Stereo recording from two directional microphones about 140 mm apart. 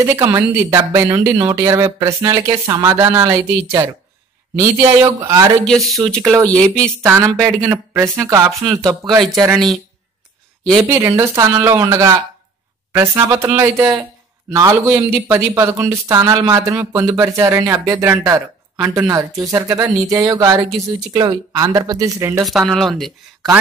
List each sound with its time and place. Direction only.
0.0 s speech: 20° right (ahead or behind)
5.7 s speech: centre (ahead or behind)
7.0 s speech: 20° right (ahead or behind)
10.7 s speech: 20° right (ahead or behind)
22.4 s speech: centre (ahead or behind)